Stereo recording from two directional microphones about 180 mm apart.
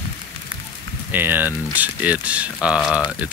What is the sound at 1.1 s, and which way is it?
Speech, 10° right (ahead or behind).